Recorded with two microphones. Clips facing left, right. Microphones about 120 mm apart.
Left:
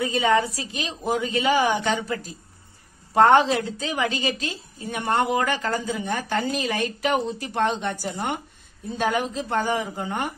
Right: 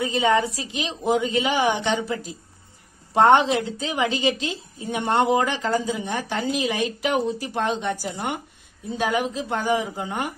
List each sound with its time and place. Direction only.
0.0 s a woman's voice: 25° right (ahead or behind)
3.2 s a woman's voice: 25° right (ahead or behind)